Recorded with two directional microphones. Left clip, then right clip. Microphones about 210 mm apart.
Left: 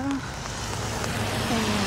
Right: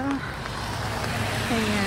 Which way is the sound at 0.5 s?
50° left (ahead or behind).